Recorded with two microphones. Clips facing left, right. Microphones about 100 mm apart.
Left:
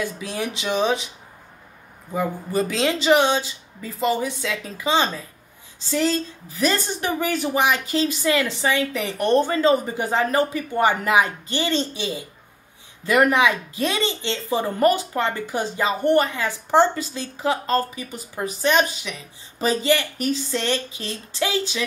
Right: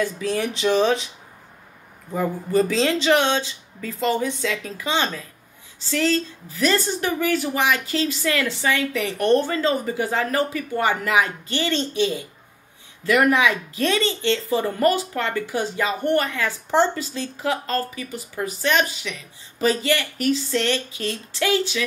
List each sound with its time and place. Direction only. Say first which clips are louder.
0.2 s speech: right 5 dB; 15° left (ahead or behind)
2.1 s speech: right 2 dB; 10° left (ahead or behind)